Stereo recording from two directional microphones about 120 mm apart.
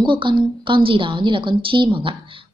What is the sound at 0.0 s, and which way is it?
A woman's voice, 45° right (ahead or behind).